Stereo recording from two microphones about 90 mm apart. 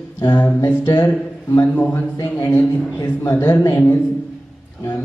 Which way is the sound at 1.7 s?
20° left (ahead or behind).